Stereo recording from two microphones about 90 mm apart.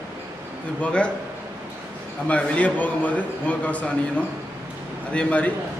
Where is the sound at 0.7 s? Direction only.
10° left (ahead or behind).